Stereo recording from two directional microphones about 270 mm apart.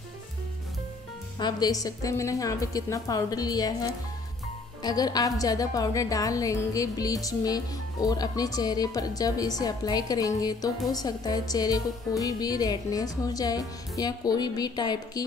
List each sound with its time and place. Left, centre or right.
1.4 s a woman's voice: centre
4.8 s a woman's voice: centre